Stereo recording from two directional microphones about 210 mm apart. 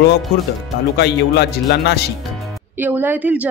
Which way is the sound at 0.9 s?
55° left (ahead or behind).